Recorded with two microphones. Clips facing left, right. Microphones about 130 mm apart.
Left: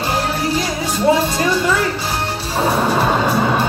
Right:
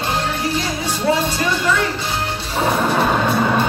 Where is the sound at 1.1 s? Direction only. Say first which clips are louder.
Left 3 dB; 25° left (ahead or behind).